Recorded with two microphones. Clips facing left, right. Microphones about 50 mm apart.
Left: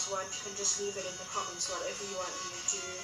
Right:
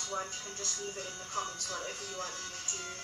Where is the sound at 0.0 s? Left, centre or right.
Centre.